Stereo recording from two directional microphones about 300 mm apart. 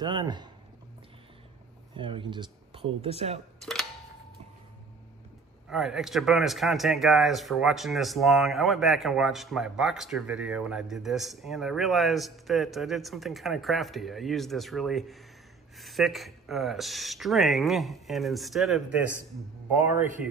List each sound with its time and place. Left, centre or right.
0.0 s speech: centre
2.0 s speech: centre
5.7 s speech: centre